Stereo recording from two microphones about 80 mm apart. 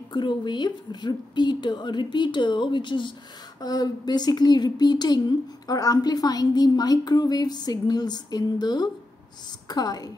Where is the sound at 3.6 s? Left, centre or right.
Left.